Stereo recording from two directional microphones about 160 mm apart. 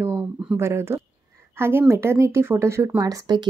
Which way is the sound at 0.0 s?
15° right (ahead or behind).